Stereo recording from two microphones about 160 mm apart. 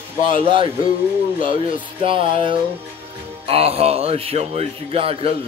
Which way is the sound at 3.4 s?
40° right (ahead or behind).